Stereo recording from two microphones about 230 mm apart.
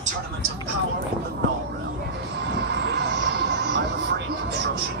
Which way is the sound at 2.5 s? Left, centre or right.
Right.